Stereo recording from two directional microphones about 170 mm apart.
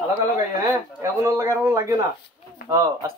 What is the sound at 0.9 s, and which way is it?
A man's voice, 20° right (ahead or behind).